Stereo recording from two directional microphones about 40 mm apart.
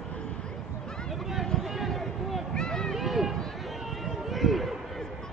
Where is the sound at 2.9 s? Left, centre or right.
Centre.